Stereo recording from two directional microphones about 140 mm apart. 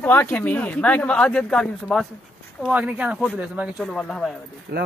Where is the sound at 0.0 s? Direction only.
15° left (ahead or behind).